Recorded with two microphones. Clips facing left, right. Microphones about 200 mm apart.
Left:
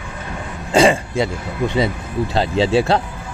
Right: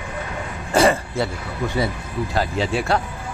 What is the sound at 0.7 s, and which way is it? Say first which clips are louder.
Speech: left 3 dB; 15° left (ahead or behind).